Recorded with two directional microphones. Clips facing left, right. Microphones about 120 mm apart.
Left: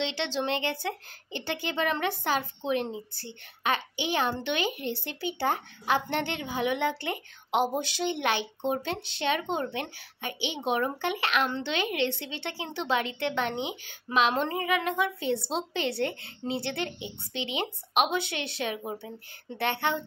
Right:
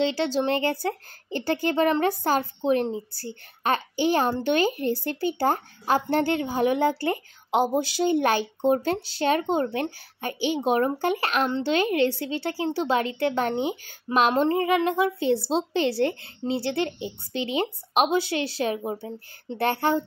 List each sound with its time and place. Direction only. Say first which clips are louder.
0.1 s speech: right 6 dB; 40° right (ahead or behind)